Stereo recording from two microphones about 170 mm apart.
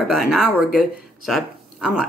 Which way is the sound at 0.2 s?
5° right (ahead or behind).